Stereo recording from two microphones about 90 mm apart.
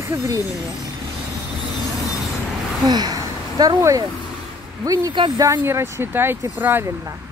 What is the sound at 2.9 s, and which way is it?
A woman's voice, 50° right (ahead or behind).